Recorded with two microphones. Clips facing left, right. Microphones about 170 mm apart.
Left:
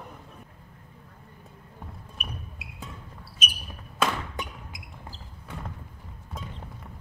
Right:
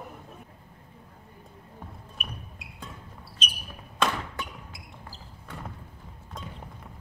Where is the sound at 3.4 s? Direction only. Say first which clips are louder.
Left 2 dB; 10° left (ahead or behind).